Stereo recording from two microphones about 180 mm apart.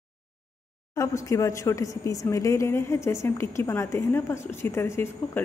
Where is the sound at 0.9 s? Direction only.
15° left (ahead or behind).